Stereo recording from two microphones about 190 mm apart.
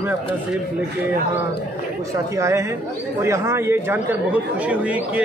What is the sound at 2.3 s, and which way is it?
Speech, 15° right (ahead or behind).